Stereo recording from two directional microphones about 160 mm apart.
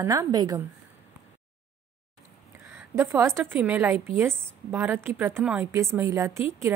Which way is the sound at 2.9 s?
15° right (ahead or behind).